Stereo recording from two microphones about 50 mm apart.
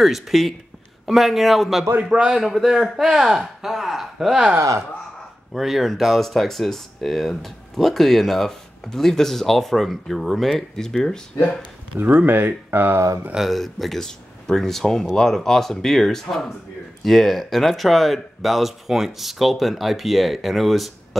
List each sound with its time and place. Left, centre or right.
0.0 s speech: centre
2.0 s speech: centre
4.6 s speech: right
5.5 s speech: centre
11.9 s speech: right
13.5 s speech: centre